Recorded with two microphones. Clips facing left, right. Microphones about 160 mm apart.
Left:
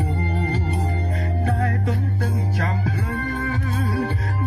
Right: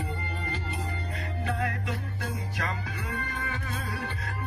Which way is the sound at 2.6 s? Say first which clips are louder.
Left 9 dB; 40° left (ahead or behind).